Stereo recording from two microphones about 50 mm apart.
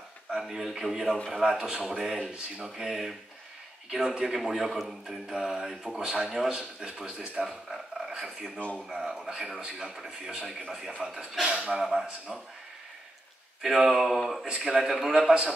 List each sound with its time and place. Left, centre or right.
0.3 s a man's voice: centre
7.4 s a sound: centre
8.8 s a man's voice: centre
13.6 s a man's voice: centre
15.1 s a man's voice: centre